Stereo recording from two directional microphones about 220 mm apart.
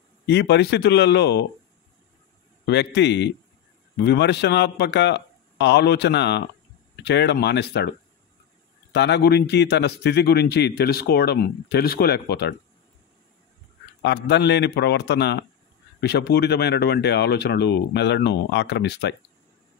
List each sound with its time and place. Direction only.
0.3 s a man's voice: 50° left (ahead or behind)
2.6 s a man's voice: 50° left (ahead or behind)
8.9 s a man's voice: 50° left (ahead or behind)
14.0 s a man's voice: 50° left (ahead or behind)